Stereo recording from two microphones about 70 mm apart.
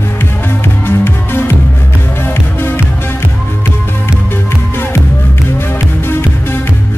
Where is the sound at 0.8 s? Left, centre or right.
Left.